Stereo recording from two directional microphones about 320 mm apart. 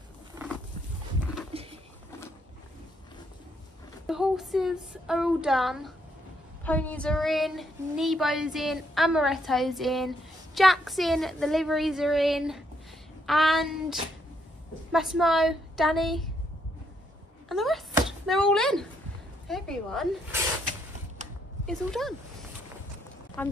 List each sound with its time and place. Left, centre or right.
1.5 s a sound: centre
4.1 s speech: centre
17.5 s speech: centre
21.6 s speech: centre
23.4 s speech: centre